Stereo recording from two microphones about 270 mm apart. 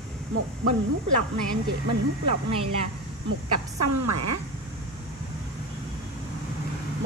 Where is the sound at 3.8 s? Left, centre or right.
Right.